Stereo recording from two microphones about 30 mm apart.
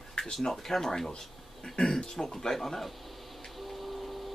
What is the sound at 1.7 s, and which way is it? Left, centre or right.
Speech, left.